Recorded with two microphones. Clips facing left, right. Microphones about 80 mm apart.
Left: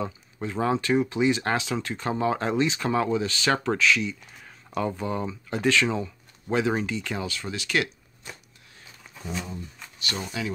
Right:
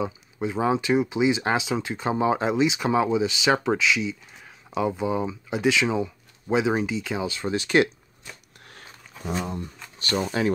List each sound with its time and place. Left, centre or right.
0.0 s speech: centre
7.2 s speech: right
8.6 s a sound: right
10.1 s speech: right